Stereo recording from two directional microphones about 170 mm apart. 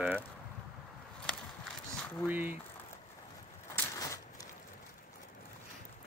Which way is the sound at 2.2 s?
10° right (ahead or behind).